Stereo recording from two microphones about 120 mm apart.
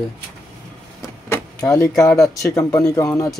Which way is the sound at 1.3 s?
25° left (ahead or behind).